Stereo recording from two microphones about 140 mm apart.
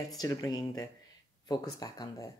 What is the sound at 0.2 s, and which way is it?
Speech, 25° left (ahead or behind).